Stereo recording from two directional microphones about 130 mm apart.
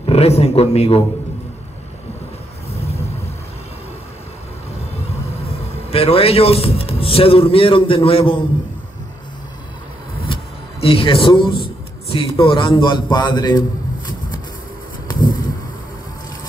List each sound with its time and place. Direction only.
0.0 s speech: 50° left (ahead or behind)
2.7 s vehicle: 50° left (ahead or behind)
5.0 s a man's voice: 50° left (ahead or behind)
10.2 s speech: 45° left (ahead or behind)